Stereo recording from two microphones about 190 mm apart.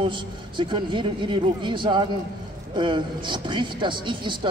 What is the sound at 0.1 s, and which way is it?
Speech, 25° right (ahead or behind).